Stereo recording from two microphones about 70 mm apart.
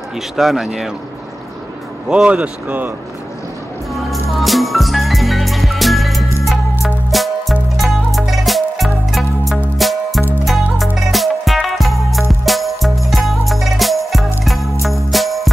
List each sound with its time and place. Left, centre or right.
0.4 s speech: centre
2.0 s speech: centre
3.9 s music: centre